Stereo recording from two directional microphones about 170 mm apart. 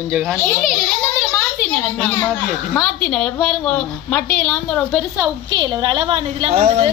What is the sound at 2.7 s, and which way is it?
A woman's voice, 5° left (ahead or behind).